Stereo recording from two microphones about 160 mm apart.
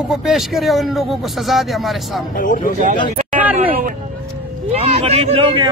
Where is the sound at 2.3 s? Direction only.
55° left (ahead or behind).